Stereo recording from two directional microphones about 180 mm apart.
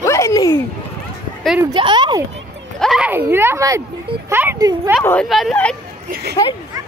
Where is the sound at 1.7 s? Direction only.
25° right (ahead or behind).